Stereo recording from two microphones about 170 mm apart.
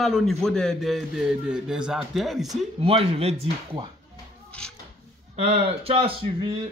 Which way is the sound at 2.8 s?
35° right (ahead or behind).